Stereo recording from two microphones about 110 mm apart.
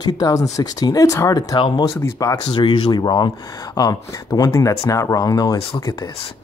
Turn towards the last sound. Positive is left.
turn(degrees=35)  # may be behind; listen again after turning